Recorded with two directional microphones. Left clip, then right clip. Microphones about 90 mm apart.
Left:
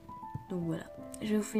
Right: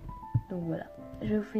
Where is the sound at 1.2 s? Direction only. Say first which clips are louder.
Right 1 dB; 40° left (ahead or behind).